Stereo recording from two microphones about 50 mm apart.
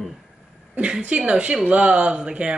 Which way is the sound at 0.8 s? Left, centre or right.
Right.